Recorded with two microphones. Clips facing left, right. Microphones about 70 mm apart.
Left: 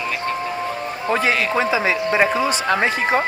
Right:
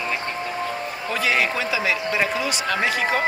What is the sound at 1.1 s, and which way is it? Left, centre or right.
Speech, left.